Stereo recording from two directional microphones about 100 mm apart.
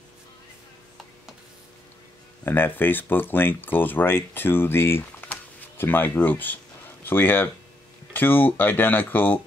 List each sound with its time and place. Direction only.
2.4 s speech: 20° left (ahead or behind)
5.3 s a sound: 20° left (ahead or behind)
7.1 s speech: 20° left (ahead or behind)